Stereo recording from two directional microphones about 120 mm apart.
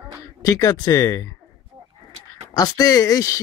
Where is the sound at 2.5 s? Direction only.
30° left (ahead or behind).